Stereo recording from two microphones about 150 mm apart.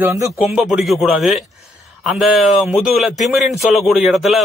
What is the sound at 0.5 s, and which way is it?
Speech, 5° right (ahead or behind).